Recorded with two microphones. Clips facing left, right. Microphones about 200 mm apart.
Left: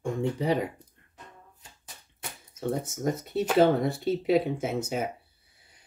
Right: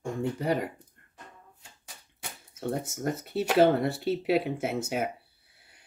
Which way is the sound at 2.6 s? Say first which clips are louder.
Left 2 dB; 5° right (ahead or behind).